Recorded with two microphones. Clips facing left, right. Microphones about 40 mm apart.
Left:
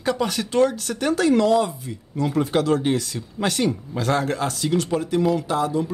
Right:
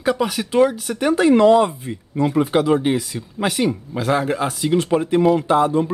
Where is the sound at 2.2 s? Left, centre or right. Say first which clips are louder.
Right 4 dB; centre.